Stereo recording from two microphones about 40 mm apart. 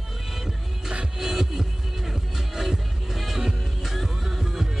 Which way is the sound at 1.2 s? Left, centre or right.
Centre.